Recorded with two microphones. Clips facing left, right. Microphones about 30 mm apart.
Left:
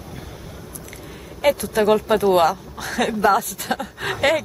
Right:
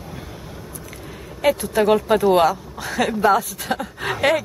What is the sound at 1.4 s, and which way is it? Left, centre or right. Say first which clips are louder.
Speech: even; centre.